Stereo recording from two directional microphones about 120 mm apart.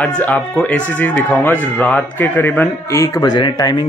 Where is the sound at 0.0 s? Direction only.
10° left (ahead or behind); by 3.8 s 35° left (ahead or behind).